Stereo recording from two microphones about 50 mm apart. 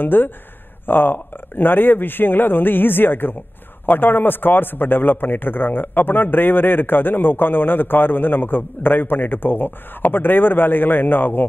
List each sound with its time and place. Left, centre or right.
0.0 s a man's voice: left